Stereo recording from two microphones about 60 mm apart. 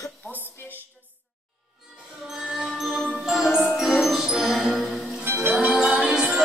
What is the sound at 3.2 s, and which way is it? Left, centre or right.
Music, centre.